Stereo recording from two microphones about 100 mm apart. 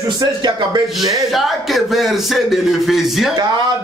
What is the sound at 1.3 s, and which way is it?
Music, centre (ahead or behind).